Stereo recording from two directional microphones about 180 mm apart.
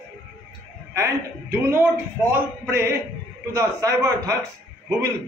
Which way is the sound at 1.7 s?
10° right (ahead or behind).